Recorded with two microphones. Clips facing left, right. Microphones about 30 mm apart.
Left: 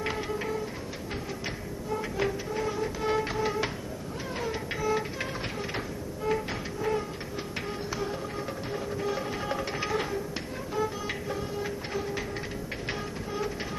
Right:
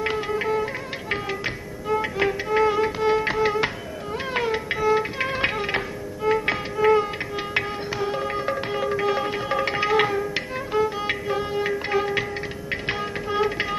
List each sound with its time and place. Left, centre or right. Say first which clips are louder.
0.0 s music: right 7 dB; right
3.0 s music: right 7 dB; right
3.3 s music: right 7 dB; right
4.3 s music: right 9 dB; right
4.6 s music: right 7 dB; right
5.2 s music: right 10 dB; right
7.9 s music: right 8 dB; right
8.4 s music: right 9 dB; right
9.1 s music: right 7 dB; right
10.8 s music: right 7 dB; right